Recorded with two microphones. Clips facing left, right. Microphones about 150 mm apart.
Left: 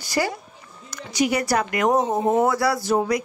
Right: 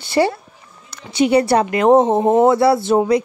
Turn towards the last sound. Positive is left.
turn(degrees=-25)  # may be behind; listen again after turning